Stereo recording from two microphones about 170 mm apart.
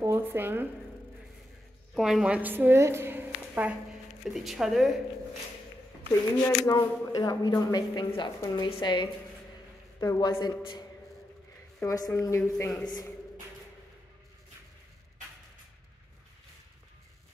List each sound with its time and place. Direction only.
0.0 s speech: 15° right (ahead or behind)
2.0 s a woman's voice: centre (ahead or behind)
6.4 s speech: 20° left (ahead or behind)